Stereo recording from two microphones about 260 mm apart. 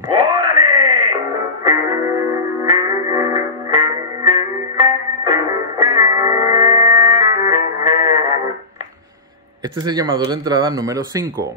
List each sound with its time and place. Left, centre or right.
0.1 s wail: centre
1.6 s music: centre
9.8 s speech: centre